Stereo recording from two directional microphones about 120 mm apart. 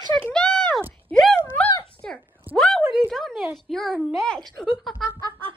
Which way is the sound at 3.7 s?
Centre (ahead or behind).